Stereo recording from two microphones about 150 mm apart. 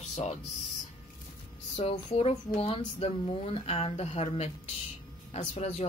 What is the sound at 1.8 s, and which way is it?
Speech, 45° left (ahead or behind).